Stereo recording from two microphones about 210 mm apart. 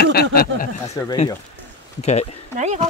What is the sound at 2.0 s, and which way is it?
Speech, 30° left (ahead or behind).